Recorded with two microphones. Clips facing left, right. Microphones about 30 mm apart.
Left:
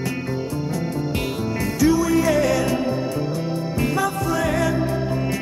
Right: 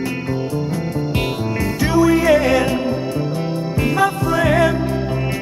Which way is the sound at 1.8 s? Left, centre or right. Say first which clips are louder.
Right 3 dB; right.